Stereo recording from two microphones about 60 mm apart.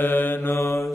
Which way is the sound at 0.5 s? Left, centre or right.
Centre.